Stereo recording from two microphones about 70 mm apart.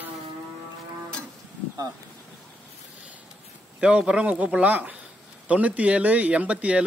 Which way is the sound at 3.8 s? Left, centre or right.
Centre.